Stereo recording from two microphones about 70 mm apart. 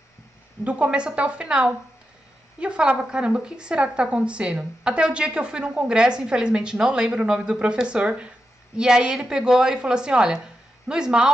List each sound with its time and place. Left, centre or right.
0.7 s a woman's voice: centre